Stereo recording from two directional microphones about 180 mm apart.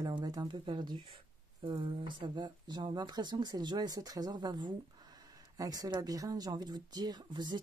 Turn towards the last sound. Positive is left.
turn(degrees=-25)  # may be behind; listen again after turning